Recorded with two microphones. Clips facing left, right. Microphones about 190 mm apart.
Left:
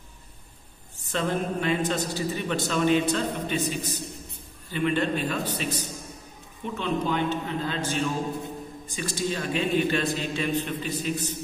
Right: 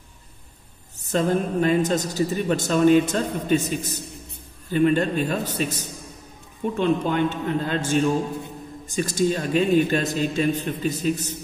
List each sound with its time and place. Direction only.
1.1 s a woman's voice: 40° right (ahead or behind)